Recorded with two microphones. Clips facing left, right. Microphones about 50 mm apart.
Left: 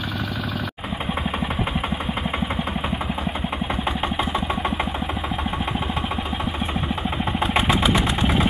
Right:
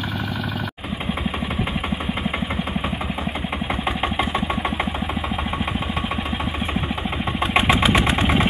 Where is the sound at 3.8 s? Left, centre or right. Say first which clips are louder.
Right 2 dB; centre.